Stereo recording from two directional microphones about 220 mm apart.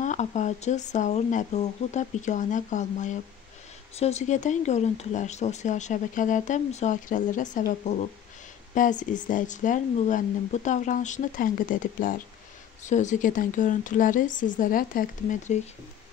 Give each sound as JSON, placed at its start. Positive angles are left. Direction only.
{"t": 0.0, "sound": "speech", "side_deg": 35}